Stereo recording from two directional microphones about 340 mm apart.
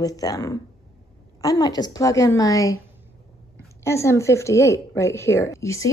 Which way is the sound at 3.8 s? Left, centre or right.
Centre.